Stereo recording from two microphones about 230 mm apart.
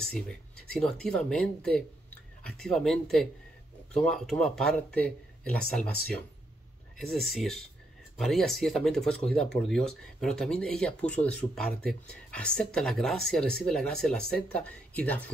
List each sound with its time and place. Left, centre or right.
0.0 s speech: centre